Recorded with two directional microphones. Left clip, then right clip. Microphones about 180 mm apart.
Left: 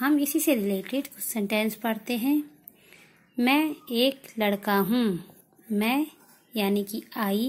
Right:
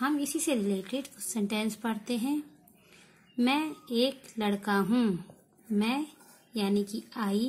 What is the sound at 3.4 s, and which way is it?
A woman's voice, 25° left (ahead or behind).